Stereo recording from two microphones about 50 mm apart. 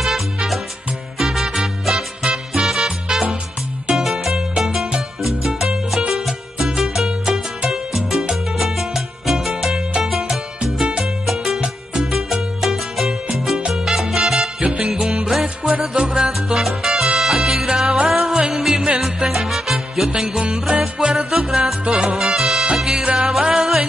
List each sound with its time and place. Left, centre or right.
1.1 s music: centre
7.1 s music: centre
11.3 s music: centre
13.6 s salsa music: right
13.8 s salsa music: centre
14.6 s music: right
16.0 s music: centre
20.1 s music: centre
20.7 s music: right
21.5 s music: centre